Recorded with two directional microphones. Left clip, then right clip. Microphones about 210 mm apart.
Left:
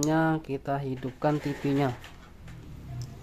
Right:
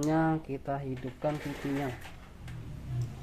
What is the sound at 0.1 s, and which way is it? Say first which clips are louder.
Speech: left 2 dB; 15° left (ahead or behind).